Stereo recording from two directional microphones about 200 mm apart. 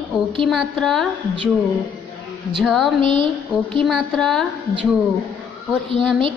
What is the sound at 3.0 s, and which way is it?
Speech, 25° right (ahead or behind).